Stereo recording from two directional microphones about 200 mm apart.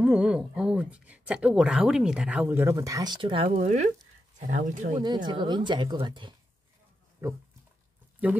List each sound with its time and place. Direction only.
0.0 s speech: 5° right (ahead or behind); by 3.4 s 25° right (ahead or behind)
3.4 s speech: 35° right (ahead or behind)
4.9 s speech: 20° right (ahead or behind)